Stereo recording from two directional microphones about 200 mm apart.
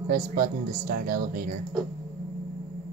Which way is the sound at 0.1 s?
45° right (ahead or behind).